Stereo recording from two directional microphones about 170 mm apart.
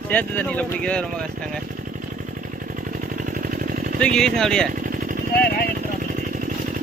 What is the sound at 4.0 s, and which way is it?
Speech, 5° left (ahead or behind).